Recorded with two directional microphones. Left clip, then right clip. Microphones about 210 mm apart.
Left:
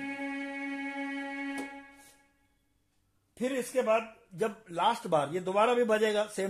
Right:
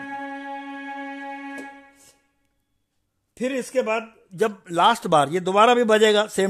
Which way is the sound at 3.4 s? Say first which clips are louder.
Right 7 dB; 50° right (ahead or behind).